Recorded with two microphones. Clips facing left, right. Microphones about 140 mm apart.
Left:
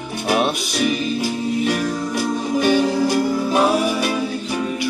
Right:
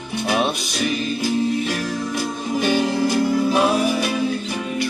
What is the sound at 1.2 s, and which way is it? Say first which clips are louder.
Music: even; 45° left (ahead or behind).